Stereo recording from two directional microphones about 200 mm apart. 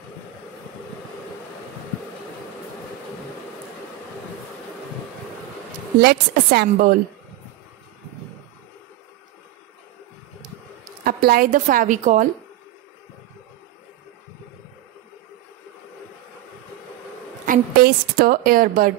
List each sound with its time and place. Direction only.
5.9 s a woman's voice: 55° right (ahead or behind)
11.1 s a woman's voice: 50° right (ahead or behind)
17.5 s a woman's voice: 50° right (ahead or behind)